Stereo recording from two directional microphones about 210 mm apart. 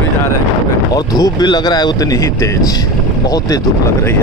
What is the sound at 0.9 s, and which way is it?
Speech, 15° left (ahead or behind).